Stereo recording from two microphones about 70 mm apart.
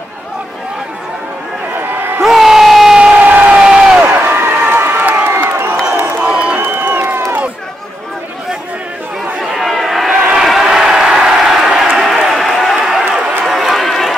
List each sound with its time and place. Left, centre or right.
2.2 s crowd: centre
3.0 s crowd: right
6.2 s crowd: centre
6.6 s crowd: right
9.4 s a sound: centre
13.5 s run: centre